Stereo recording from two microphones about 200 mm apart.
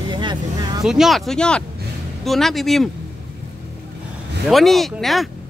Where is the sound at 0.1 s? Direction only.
20° right (ahead or behind).